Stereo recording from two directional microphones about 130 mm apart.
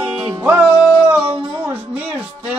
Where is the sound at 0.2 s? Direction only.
25° right (ahead or behind).